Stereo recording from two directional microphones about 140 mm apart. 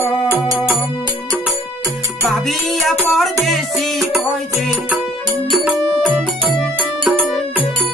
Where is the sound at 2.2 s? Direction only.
Centre (ahead or behind).